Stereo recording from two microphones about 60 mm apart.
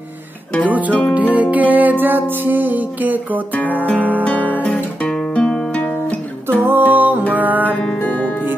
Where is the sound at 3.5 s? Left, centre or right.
Left.